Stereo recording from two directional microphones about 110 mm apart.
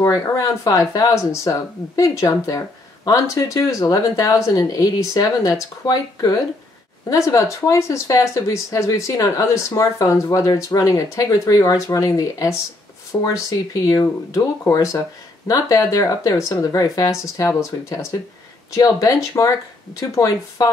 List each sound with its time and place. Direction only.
0.0 s speech: 30° left (ahead or behind)